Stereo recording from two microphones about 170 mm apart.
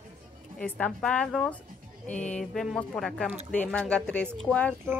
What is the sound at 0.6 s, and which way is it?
A woman's voice, 10° left (ahead or behind).